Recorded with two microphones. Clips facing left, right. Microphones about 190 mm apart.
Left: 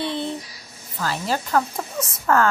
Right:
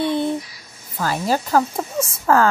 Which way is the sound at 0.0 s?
50° right (ahead or behind).